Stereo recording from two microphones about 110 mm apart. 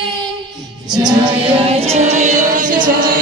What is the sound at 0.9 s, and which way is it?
Music, 5° right (ahead or behind).